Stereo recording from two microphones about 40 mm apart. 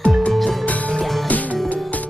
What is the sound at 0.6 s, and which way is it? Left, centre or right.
Music, left.